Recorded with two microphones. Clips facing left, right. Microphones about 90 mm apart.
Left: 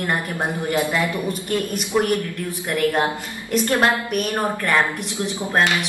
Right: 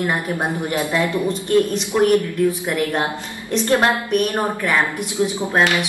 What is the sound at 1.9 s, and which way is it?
Speech, 5° left (ahead or behind).